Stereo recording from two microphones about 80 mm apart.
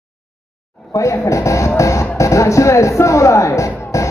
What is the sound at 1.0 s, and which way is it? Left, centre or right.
Speech, left.